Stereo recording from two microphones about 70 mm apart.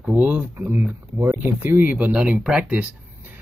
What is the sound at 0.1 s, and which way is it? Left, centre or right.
Speech, right.